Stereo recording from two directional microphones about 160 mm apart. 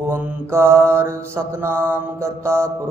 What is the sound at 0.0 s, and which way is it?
Mantra, 10° right (ahead or behind).